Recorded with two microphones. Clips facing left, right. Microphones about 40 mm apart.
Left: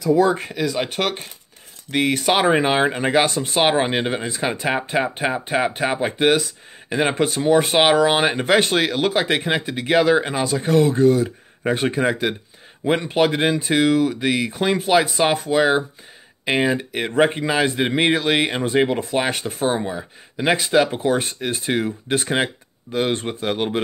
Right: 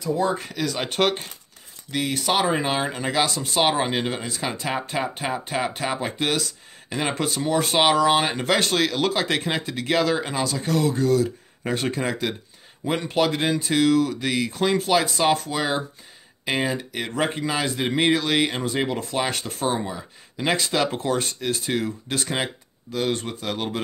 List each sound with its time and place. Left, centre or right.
0.5 s speech: centre
1.9 s speech: left